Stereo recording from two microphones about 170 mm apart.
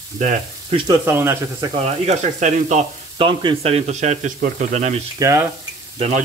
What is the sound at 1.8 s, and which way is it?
Speech, 40° right (ahead or behind).